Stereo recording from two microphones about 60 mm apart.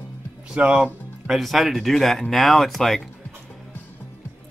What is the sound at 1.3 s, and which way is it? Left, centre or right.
Speech, centre.